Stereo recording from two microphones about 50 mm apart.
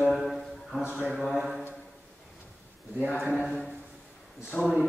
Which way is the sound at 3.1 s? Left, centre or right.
Right.